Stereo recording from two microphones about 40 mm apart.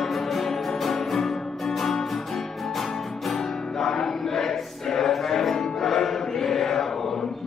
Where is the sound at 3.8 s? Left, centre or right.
Centre.